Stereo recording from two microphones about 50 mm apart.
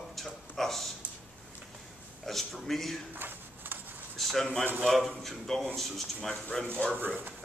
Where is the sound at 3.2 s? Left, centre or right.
Right.